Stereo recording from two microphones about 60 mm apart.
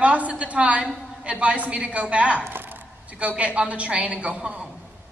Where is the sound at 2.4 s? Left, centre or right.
Right; by 4.7 s centre.